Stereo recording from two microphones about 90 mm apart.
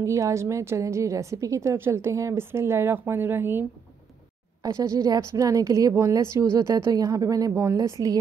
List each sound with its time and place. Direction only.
0.0 s a woman's voice: 35° right (ahead or behind)
4.6 s a woman's voice: 35° right (ahead or behind)